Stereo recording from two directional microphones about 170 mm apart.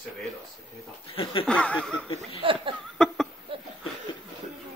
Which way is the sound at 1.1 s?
35° left (ahead or behind).